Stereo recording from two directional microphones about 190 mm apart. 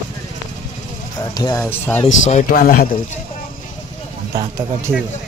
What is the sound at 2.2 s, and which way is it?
Speech, 45° left (ahead or behind).